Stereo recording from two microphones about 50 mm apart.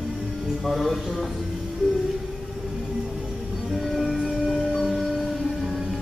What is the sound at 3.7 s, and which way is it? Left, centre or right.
Music, centre.